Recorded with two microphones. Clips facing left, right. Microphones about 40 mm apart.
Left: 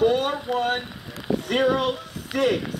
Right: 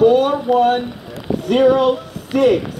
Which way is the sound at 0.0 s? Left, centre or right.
Right.